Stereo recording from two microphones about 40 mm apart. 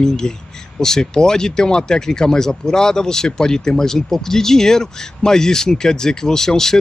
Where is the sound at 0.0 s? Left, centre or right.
Centre.